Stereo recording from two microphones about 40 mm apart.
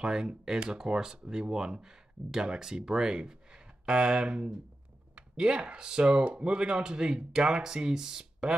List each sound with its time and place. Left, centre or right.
0.0 s speech: centre